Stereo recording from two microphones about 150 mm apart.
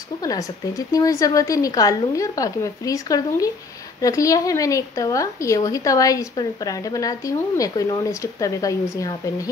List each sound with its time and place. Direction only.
0.2 s a woman's voice: 25° left (ahead or behind)